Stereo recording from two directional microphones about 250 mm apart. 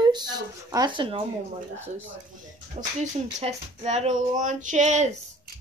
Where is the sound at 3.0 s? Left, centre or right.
Right.